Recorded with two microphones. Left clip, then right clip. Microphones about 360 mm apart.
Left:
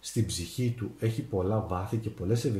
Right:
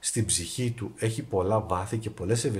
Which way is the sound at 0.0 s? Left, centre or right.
Right.